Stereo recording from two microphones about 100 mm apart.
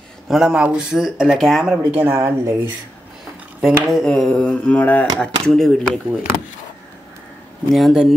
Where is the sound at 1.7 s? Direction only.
20° right (ahead or behind).